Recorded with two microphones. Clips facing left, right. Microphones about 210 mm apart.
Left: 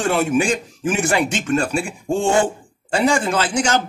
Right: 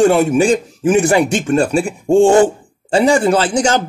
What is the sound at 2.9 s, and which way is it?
Speech, 35° right (ahead or behind).